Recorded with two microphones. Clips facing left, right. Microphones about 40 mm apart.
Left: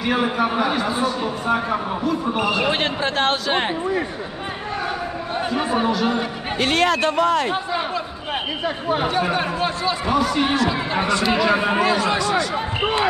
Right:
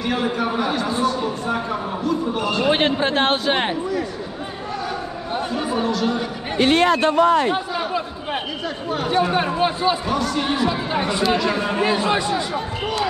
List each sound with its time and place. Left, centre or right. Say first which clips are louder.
0.0 s speech: left 2 dB; centre
2.7 s speech: right 3 dB; right
5.5 s speech: left 3 dB; left
6.6 s a man's voice: right 2 dB; left
8.6 s speech: left 6 dB; left
9.3 s speech: right 2 dB; centre
10.0 s speech: left 3 dB; centre
10.7 s speech: left 1 dB; centre
11.5 s speech: left 3 dB; left
11.8 s speech: even; centre
12.5 s speech: left 3 dB; left